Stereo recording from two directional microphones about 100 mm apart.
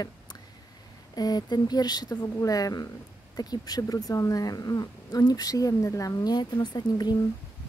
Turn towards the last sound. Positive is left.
turn(degrees=45)  # may be behind; listen again after turning